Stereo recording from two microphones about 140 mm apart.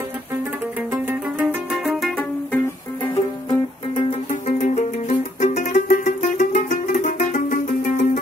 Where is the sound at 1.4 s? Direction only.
5° right (ahead or behind).